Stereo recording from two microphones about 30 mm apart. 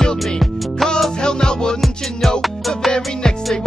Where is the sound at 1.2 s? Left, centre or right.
Left.